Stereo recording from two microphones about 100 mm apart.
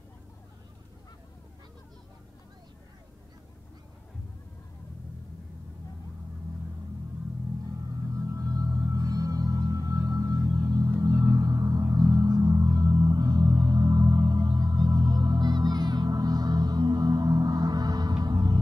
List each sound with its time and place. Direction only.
8.1 s music: 35° right (ahead or behind)